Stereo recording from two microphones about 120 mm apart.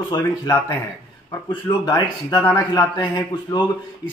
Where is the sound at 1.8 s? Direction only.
35° left (ahead or behind).